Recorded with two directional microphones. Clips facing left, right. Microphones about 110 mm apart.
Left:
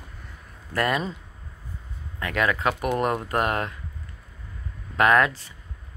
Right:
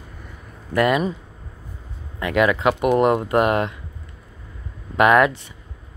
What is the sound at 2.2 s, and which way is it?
Speech, 20° right (ahead or behind).